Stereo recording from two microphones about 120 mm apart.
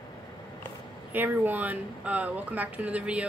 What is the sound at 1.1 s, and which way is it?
Speech, 15° right (ahead or behind).